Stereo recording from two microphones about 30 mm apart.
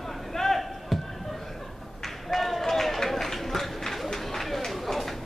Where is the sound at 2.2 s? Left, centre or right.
Centre.